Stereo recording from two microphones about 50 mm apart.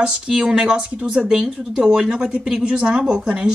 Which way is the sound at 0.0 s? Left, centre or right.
Centre.